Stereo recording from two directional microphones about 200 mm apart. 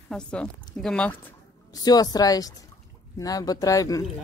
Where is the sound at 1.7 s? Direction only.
20° left (ahead or behind).